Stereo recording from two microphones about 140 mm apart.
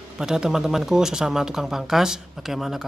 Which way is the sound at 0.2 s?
5° right (ahead or behind).